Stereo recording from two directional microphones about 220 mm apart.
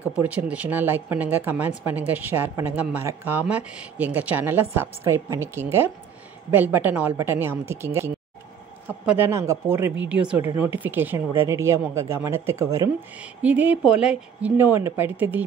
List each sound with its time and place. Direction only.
0.2 s speech: 5° right (ahead or behind)